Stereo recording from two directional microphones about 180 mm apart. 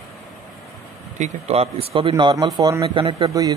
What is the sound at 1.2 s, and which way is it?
Speech, 35° right (ahead or behind).